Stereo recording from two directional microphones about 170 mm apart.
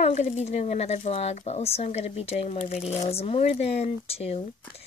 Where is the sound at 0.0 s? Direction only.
40° left (ahead or behind).